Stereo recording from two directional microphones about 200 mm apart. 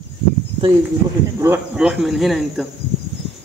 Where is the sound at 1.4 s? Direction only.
10° right (ahead or behind).